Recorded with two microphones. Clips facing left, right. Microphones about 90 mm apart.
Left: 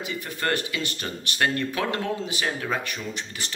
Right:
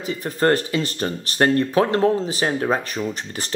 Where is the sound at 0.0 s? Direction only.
35° right (ahead or behind).